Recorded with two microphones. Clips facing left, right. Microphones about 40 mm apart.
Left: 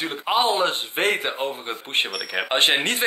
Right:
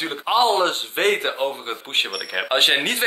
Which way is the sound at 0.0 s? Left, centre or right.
Centre.